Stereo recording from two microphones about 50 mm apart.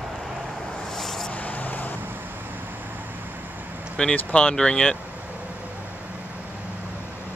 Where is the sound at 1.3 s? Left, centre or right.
Left.